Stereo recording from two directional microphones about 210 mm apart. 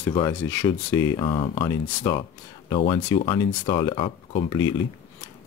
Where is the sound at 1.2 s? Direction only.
25° left (ahead or behind).